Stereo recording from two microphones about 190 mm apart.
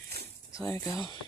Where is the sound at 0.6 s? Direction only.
20° left (ahead or behind).